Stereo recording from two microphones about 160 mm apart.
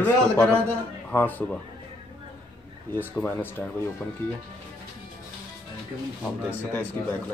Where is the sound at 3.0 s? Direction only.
10° left (ahead or behind).